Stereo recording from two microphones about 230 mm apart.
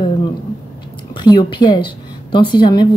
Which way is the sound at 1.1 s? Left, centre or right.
Centre.